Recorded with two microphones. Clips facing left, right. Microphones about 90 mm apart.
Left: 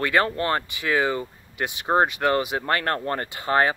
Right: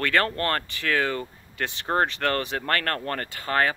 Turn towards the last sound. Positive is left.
turn(degrees=20)  # may be behind; listen again after turning